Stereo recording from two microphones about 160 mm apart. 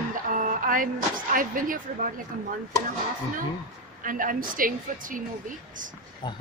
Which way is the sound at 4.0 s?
60° right (ahead or behind).